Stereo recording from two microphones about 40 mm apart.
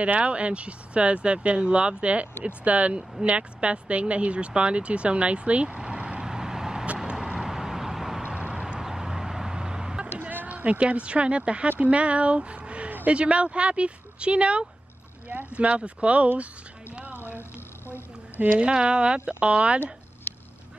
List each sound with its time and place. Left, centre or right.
0.0 s speech: right
6.2 s vehicle: centre
8.2 s vehicle: right
8.7 s vehicle: centre
10.3 s speech: right
18.6 s speech: right